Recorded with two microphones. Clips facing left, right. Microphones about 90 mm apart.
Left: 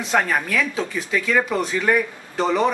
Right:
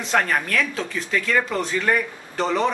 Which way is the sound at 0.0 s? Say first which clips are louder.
Left 1 dB; 5° left (ahead or behind).